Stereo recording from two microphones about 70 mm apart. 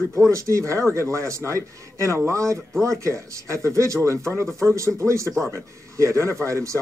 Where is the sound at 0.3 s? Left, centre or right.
Right.